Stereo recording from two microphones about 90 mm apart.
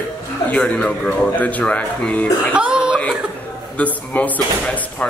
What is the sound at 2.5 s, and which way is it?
Throat clearing, 10° right (ahead or behind).